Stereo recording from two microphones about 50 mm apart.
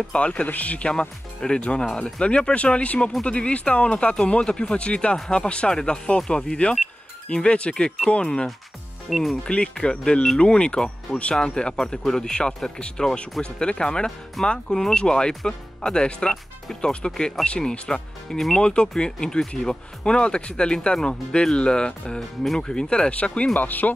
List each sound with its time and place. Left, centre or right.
0.1 s speech: left
9.1 s speech: centre
9.4 s speech: centre
23.5 s speech: left